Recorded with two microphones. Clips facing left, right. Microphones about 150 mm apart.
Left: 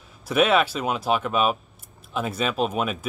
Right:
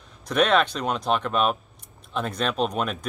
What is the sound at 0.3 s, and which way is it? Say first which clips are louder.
A man's voice: left 1 dB; 5° left (ahead or behind).